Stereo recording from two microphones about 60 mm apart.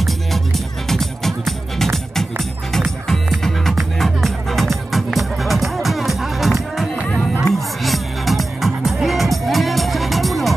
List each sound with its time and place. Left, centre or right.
0.0 s music: centre